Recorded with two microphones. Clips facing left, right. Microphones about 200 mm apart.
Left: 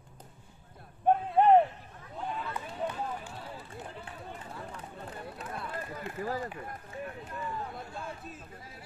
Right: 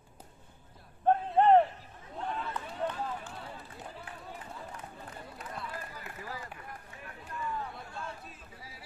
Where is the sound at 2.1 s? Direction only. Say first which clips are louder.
Even; 5° left (ahead or behind).